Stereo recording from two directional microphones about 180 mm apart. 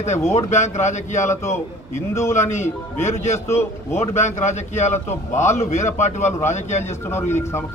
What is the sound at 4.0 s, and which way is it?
A man's voice, 40° left (ahead or behind).